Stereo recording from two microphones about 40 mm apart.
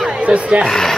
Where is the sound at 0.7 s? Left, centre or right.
Centre.